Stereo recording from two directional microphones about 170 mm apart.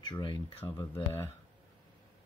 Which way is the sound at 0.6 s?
15° left (ahead or behind).